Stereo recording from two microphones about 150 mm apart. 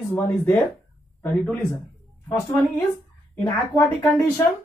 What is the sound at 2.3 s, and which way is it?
Speech, 15° left (ahead or behind).